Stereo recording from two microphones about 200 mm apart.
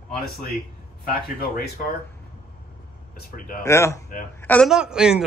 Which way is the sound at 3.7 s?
15° left (ahead or behind).